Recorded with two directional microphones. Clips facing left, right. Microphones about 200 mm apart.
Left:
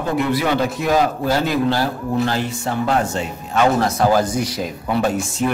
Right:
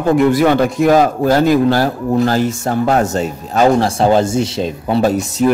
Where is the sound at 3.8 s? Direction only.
30° right (ahead or behind).